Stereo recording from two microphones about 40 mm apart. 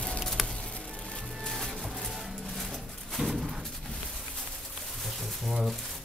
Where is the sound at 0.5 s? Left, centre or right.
Centre.